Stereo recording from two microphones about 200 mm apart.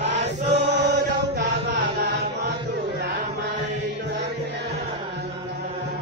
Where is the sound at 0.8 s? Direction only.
55° right (ahead or behind).